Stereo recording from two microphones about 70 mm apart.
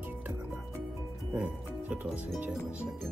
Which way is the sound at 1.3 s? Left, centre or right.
Centre.